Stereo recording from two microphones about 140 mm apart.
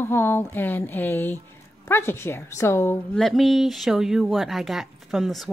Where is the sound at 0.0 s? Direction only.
15° left (ahead or behind).